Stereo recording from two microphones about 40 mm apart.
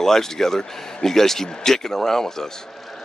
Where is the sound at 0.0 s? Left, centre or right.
Centre.